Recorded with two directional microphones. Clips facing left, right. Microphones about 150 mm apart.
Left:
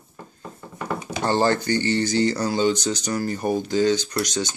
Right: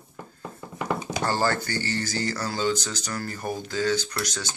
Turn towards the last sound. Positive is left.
turn(degrees=20)  # may be behind; listen again after turning